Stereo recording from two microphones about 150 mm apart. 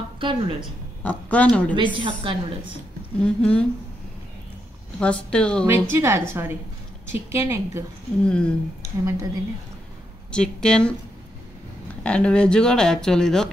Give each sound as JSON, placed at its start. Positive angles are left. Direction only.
{"t": 0.2, "sound": "a woman's voice", "side_deg": -35}
{"t": 1.0, "sound": "speech", "side_deg": 10}
{"t": 1.8, "sound": "a woman's voice", "side_deg": -35}
{"t": 3.2, "sound": "speech", "side_deg": 5}
{"t": 5.0, "sound": "speech", "side_deg": 5}
{"t": 5.7, "sound": "a woman's voice", "side_deg": -15}
{"t": 8.3, "sound": "speech", "side_deg": 5}
{"t": 9.0, "sound": "a woman's voice", "side_deg": -20}
{"t": 10.3, "sound": "speech", "side_deg": 5}
{"t": 12.0, "sound": "speech", "side_deg": 5}